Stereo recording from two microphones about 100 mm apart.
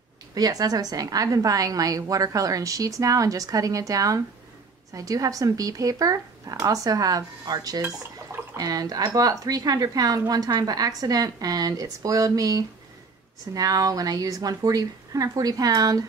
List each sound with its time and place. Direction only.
0.3 s speech: 40° right (ahead or behind)